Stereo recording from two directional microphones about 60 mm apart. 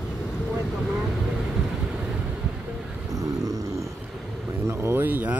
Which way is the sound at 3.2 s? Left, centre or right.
Right.